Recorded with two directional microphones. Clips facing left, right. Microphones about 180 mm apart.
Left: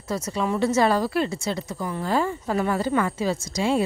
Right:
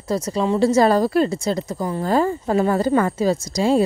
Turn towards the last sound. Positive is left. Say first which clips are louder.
# right 5 dB
turn(degrees=-40)  # may be behind; listen again after turning